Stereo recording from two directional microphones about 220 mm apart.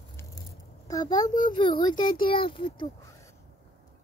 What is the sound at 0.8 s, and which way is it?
A child's voice, 15° left (ahead or behind).